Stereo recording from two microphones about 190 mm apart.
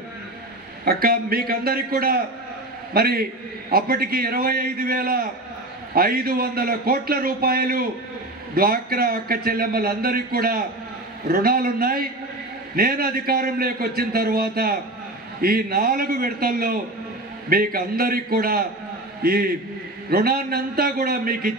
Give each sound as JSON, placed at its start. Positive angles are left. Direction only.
{"t": 0.8, "sound": "a man's voice", "side_deg": -50}